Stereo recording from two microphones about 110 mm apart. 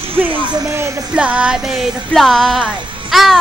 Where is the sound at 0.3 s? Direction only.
45° right (ahead or behind).